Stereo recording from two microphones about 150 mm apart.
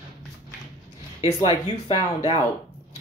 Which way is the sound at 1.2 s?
35° left (ahead or behind).